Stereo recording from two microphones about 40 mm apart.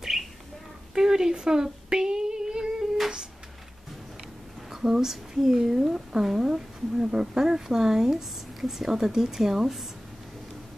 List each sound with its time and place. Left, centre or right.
0.1 s bird: centre
0.9 s female singing: centre
4.6 s speech: centre